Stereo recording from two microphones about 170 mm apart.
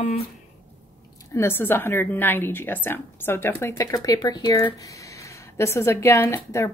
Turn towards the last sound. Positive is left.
turn(degrees=15)  # may be behind; listen again after turning